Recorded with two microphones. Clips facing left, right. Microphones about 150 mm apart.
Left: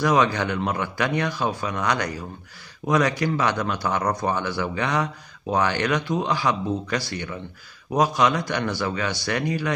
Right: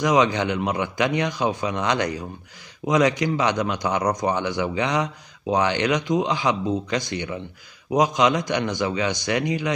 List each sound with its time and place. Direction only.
0.0 s a man's voice: 20° right (ahead or behind)